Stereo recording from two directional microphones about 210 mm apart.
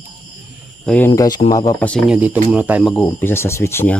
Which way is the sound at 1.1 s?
20° left (ahead or behind).